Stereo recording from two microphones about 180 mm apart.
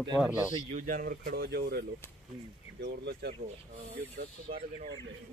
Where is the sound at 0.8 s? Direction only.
50° right (ahead or behind); by 3.3 s 65° right (ahead or behind).